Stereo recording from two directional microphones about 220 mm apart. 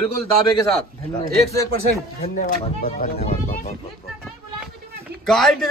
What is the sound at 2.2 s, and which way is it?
Speech, 40° left (ahead or behind).